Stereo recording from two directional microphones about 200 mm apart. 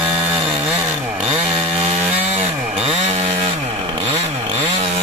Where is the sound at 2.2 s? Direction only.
30° right (ahead or behind).